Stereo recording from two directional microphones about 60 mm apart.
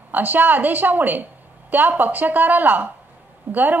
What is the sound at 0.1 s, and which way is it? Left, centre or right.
A woman's voice, right.